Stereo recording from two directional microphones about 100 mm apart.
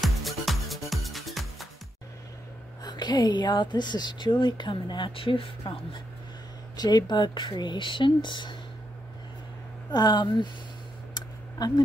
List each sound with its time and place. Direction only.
0.0 s music: centre (ahead or behind)
2.8 s speech: 45° left (ahead or behind); by 6.0 s 65° left (ahead or behind)
6.8 s speech: 45° left (ahead or behind)
9.8 s speech: 45° left (ahead or behind)
11.1 s a sound: 45° left (ahead or behind)